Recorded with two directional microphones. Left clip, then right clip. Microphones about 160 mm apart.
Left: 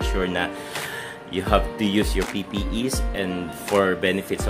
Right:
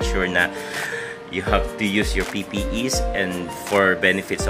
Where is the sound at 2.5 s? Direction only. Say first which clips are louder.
Right 3 dB; 5° left (ahead or behind).